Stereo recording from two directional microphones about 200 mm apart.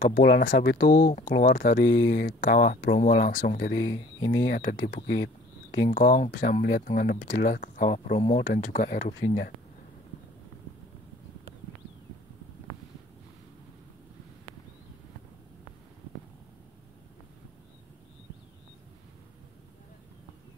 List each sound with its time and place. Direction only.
0.1 s speech: 50° left (ahead or behind)